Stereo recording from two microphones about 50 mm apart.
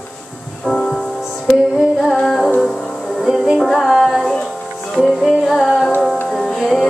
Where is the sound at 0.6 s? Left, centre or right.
Centre.